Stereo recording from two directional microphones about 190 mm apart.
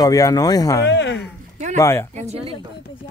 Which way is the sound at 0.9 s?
65° left (ahead or behind).